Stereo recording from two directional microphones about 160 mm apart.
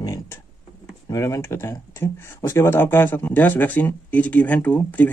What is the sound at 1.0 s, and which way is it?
Speech, 20° left (ahead or behind).